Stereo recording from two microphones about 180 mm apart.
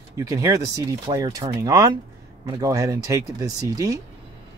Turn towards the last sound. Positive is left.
turn(degrees=-20)  # may be behind; listen again after turning